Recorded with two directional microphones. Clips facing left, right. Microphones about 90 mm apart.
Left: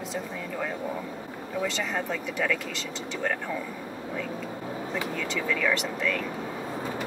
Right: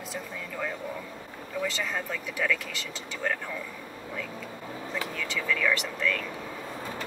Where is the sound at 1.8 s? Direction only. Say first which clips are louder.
Left 3 dB; 20° left (ahead or behind).